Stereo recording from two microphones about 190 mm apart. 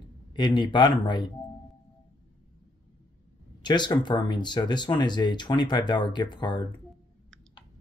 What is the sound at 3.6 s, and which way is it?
Speech, 25° left (ahead or behind).